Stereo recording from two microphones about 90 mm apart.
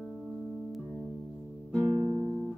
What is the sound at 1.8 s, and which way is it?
Music, 25° right (ahead or behind).